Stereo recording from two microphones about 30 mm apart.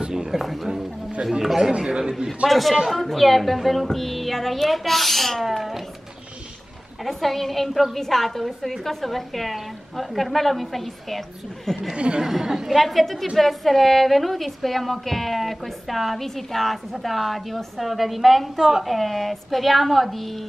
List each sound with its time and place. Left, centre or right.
0.3 s a sound: centre
1.8 s a sound: right
2.2 s music: centre
7.1 s music: centre
11.9 s speech: right
12.3 s a woman's voice: centre
12.7 s music: centre
18.6 s a woman's voice: centre
18.9 s music: centre